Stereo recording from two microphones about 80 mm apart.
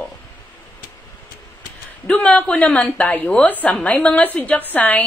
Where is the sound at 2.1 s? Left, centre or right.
Centre.